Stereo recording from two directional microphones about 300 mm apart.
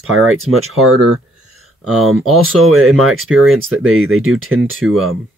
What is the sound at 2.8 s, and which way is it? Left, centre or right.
Speech, centre.